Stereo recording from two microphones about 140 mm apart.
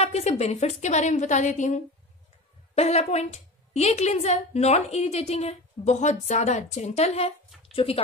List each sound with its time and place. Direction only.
0.0 s a woman's voice: 50° left (ahead or behind)
2.7 s a woman's voice: 50° left (ahead or behind)